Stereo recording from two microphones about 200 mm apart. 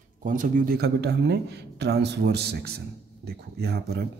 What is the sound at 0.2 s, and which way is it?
A man's voice, 40° right (ahead or behind).